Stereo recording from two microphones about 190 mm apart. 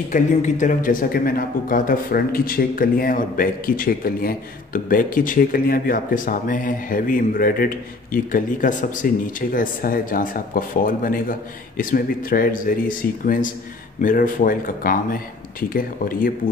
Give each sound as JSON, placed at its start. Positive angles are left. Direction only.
{"t": 0.1, "sound": "a man's voice", "side_deg": 40}